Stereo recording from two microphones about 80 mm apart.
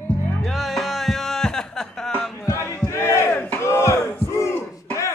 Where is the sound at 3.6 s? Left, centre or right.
Left.